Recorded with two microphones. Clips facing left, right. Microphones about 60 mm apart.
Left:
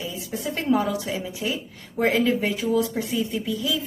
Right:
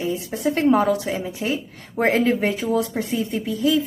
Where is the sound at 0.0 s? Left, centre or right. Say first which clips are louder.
Right 7 dB; right.